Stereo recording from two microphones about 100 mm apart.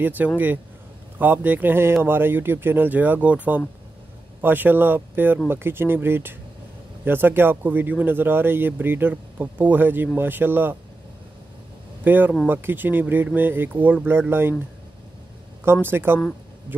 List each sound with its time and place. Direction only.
0.0 s speech: 20° right (ahead or behind)
12.0 s speech: 20° right (ahead or behind)
15.6 s speech: 25° right (ahead or behind)